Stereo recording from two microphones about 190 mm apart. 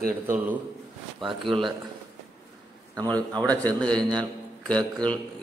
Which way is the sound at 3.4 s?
5° left (ahead or behind).